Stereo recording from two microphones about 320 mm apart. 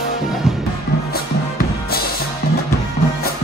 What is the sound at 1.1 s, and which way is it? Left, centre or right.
Music, left.